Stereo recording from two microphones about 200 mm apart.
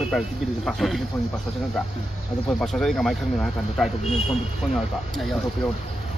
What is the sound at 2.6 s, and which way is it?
Speech, centre (ahead or behind).